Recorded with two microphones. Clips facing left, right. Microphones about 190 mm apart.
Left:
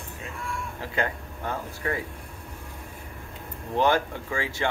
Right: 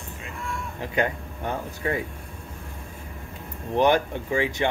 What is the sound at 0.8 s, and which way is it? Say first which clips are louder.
Speech: right 4 dB; 20° right (ahead or behind).